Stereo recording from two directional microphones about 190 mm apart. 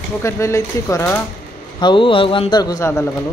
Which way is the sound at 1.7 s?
25° left (ahead or behind).